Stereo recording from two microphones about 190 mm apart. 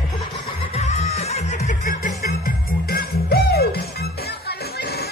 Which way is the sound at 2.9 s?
55° left (ahead or behind).